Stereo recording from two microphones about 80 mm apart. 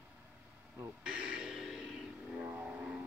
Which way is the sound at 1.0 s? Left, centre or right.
Centre.